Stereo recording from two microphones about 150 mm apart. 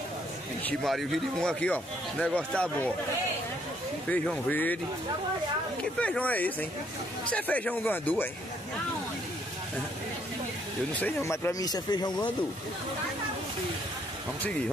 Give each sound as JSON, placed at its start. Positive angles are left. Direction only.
{"t": 0.7, "sound": "speech", "side_deg": 0}
{"t": 4.1, "sound": "speech", "side_deg": 10}
{"t": 5.9, "sound": "speech", "side_deg": 10}
{"t": 11.0, "sound": "speech", "side_deg": 15}